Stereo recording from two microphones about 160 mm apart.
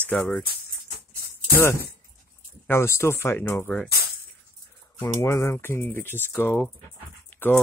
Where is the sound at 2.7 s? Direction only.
15° left (ahead or behind).